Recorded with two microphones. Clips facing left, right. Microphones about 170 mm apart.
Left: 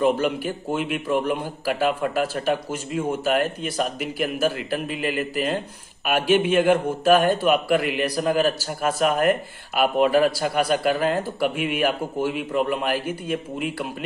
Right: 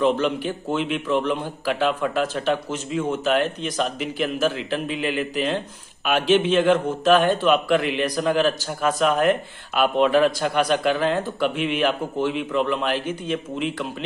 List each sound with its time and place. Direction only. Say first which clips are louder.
0.0 s a man's voice: even; 10° left (ahead or behind)